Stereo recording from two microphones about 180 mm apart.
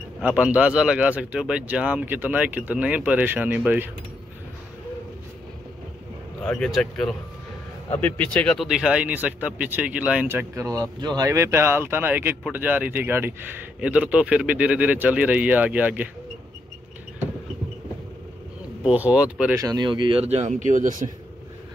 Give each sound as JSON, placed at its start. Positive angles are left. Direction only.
{"t": 0.2, "sound": "speech", "side_deg": -10}
{"t": 6.4, "sound": "speech", "side_deg": 5}
{"t": 18.9, "sound": "speech", "side_deg": -5}
{"t": 19.6, "sound": "speech", "side_deg": -20}